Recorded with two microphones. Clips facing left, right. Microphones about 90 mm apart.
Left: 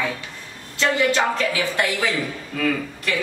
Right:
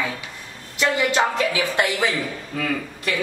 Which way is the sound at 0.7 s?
15° right (ahead or behind).